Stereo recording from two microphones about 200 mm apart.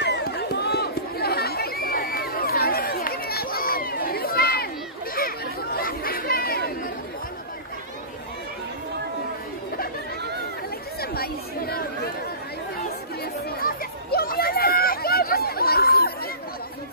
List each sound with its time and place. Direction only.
0.0 s chatter: 55° left (ahead or behind)
11.0 s chatter: 50° left (ahead or behind)
13.2 s chatter: 50° left (ahead or behind)